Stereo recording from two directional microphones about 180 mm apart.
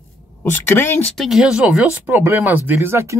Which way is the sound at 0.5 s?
10° left (ahead or behind).